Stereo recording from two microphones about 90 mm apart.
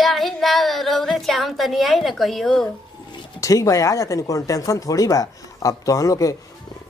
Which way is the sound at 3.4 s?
35° left (ahead or behind).